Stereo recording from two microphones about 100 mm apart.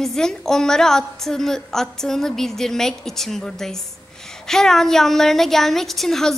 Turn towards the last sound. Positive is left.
turn(degrees=5)  # may be behind; listen again after turning